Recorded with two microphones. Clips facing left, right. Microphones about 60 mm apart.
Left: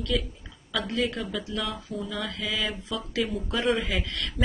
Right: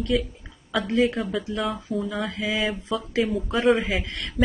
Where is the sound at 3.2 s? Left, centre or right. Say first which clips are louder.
Right 5 dB; right.